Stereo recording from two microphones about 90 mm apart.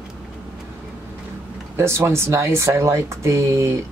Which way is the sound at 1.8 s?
30° right (ahead or behind).